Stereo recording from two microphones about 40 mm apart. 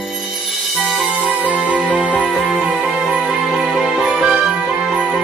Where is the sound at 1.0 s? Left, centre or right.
Centre.